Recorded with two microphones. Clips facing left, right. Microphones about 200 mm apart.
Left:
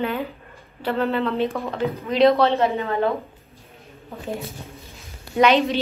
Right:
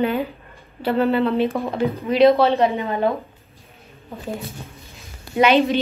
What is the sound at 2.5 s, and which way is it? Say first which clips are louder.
Speech: right 1 dB; 15° right (ahead or behind).